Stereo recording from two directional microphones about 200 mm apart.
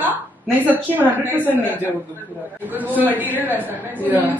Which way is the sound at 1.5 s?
10° left (ahead or behind).